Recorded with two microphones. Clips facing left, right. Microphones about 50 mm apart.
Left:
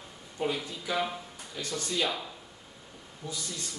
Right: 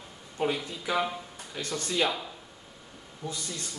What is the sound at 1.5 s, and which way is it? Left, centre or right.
Speech, right.